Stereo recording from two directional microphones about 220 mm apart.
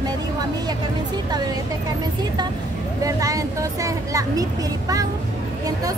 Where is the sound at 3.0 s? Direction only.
15° right (ahead or behind).